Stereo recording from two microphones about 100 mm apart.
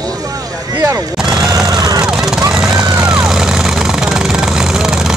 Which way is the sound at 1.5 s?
40° right (ahead or behind).